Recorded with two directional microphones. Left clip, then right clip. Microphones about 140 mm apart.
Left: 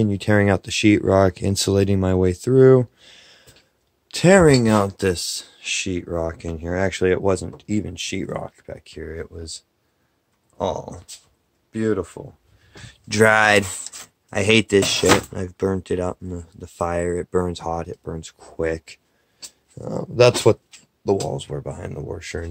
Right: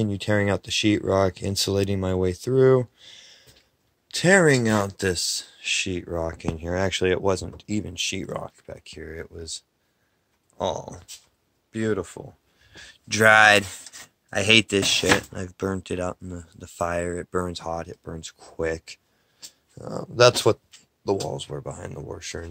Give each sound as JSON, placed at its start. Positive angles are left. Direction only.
{"t": 0.0, "sound": "speech", "side_deg": 35}
{"t": 4.1, "sound": "speech", "side_deg": 35}
{"t": 6.9, "sound": "speech", "side_deg": 10}
{"t": 9.0, "sound": "speech", "side_deg": 0}
{"t": 12.7, "sound": "a sound", "side_deg": 35}
{"t": 13.2, "sound": "speech", "side_deg": 25}